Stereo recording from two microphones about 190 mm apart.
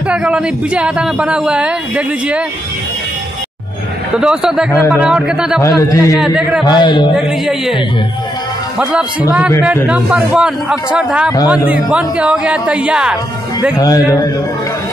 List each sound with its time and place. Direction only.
0.1 s speech: 5° right (ahead or behind)
4.2 s speech: 5° right (ahead or behind)
5.6 s a man's voice: 15° left (ahead or behind)
6.1 s speech: 5° right (ahead or behind)
6.6 s speech: 25° left (ahead or behind)
7.2 s speech: 5° right (ahead or behind)
9.8 s speech: 5° right (ahead or behind)
13.7 s speech: 20° left (ahead or behind)